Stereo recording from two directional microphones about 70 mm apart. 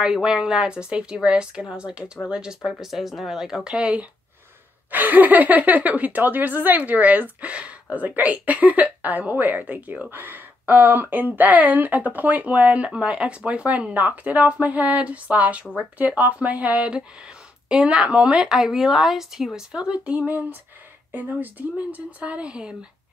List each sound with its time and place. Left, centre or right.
0.0 s speech: centre